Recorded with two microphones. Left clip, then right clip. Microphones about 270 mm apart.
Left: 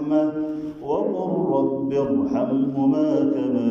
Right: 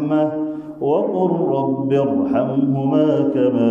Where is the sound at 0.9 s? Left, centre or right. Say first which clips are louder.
Right 6 dB; right.